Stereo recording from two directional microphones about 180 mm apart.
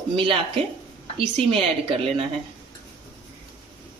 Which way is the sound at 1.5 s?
30° right (ahead or behind).